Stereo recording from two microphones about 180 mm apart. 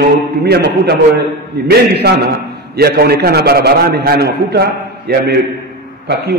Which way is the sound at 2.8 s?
60° right (ahead or behind).